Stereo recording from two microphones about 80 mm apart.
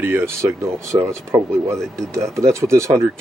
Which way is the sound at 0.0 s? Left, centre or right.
Right.